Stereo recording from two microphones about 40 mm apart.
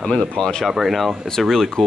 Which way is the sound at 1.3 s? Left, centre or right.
Centre.